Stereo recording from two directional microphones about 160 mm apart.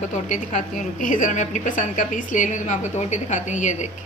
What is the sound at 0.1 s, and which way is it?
A woman's voice, 45° left (ahead or behind).